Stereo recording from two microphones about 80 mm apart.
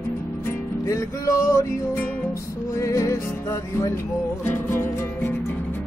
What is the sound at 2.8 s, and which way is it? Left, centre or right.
Music, left.